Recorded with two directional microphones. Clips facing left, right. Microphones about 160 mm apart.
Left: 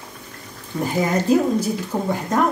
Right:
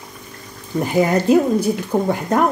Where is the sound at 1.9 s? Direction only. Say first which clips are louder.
Right 7 dB; 60° right (ahead or behind).